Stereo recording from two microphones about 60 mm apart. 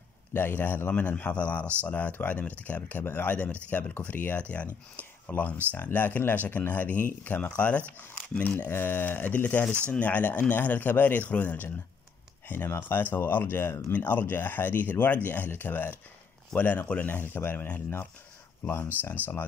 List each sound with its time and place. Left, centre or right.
0.3 s speech: left
0.9 s speech: left
8.6 s speech: left
13.9 s speech: left